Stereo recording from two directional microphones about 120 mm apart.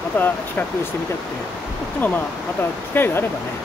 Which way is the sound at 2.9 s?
20° left (ahead or behind).